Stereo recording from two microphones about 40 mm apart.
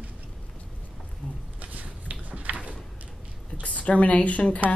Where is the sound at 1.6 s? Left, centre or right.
Right.